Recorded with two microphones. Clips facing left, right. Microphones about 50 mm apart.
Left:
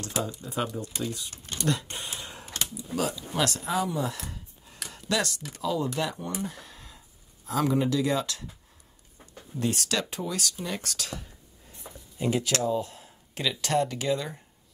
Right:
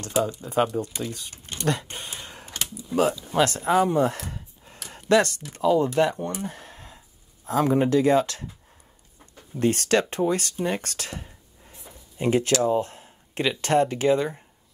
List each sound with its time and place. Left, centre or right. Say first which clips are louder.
0.4 s speech: right 8 dB; right
6.4 s a sound: right 2 dB; right
7.4 s speech: right 4 dB; right
9.6 s speech: right 7 dB; right